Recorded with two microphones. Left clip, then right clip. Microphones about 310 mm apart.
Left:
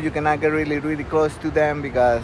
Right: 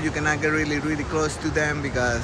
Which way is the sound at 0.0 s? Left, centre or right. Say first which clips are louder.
Left 3 dB; centre.